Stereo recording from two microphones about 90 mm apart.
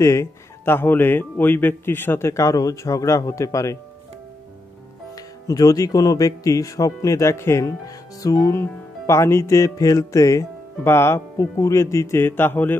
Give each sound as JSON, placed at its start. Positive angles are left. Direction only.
{"t": 0.0, "sound": "speech", "side_deg": 35}
{"t": 5.1, "sound": "speech", "side_deg": 40}